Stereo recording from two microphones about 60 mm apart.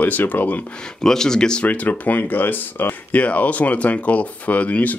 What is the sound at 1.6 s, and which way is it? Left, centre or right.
Speech, left.